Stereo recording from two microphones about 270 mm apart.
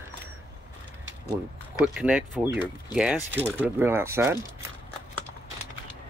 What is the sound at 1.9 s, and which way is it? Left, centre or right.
Speech, centre.